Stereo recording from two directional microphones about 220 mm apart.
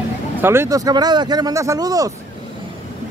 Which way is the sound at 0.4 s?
10° right (ahead or behind).